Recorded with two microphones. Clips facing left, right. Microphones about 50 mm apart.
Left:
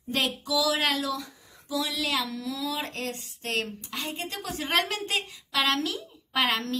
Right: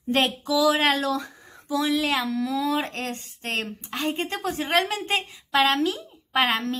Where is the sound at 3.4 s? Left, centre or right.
Right.